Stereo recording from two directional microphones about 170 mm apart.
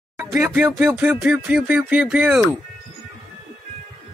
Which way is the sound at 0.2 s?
15° right (ahead or behind).